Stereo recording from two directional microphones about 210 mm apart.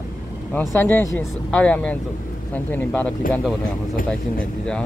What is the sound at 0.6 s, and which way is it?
Speech, 10° left (ahead or behind).